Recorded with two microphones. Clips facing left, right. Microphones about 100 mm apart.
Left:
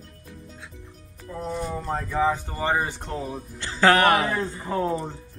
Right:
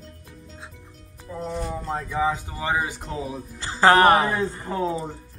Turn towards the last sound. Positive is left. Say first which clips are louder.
# even
turn(degrees=-10)  # may be behind; listen again after turning